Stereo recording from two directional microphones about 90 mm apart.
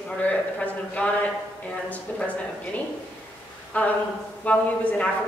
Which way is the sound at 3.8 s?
15° left (ahead or behind).